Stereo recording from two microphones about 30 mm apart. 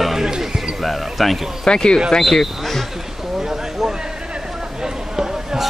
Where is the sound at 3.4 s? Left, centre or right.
Centre.